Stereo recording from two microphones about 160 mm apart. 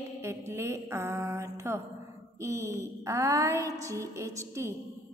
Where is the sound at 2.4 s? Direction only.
20° right (ahead or behind).